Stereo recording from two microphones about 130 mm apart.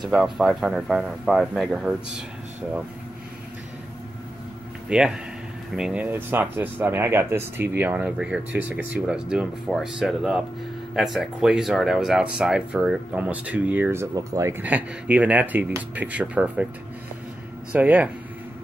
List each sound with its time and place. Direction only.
0.0 s speech: 5° right (ahead or behind)
4.8 s speech: 5° right (ahead or behind)
14.1 s speech: 25° right (ahead or behind)
14.6 s speech: 10° right (ahead or behind)
17.7 s speech: 10° right (ahead or behind)